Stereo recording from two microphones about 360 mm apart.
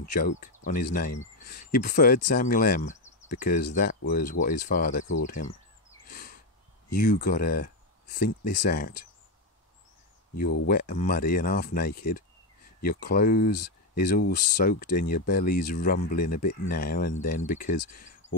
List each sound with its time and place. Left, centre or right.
0.1 s speech: left
6.0 s a sound: left
7.0 s speech: left
10.7 s speech: left